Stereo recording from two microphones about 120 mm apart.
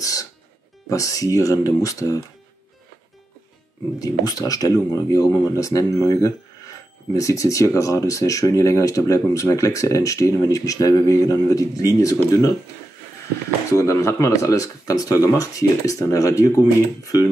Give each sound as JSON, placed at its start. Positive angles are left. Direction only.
{"t": 0.0, "sound": "music", "side_deg": 30}
{"t": 0.8, "sound": "speech", "side_deg": 30}
{"t": 4.0, "sound": "speech", "side_deg": 30}
{"t": 13.7, "sound": "speech", "side_deg": 25}